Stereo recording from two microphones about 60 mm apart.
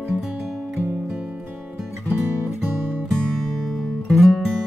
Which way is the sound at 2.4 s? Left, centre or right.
Right.